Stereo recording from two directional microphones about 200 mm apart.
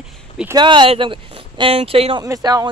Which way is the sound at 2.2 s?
15° right (ahead or behind).